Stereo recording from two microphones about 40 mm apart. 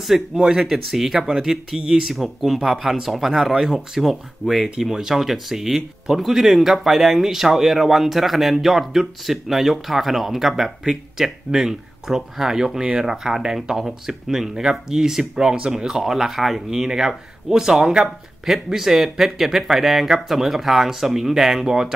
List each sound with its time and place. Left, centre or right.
0.1 s speech: centre
2.1 s speech: centre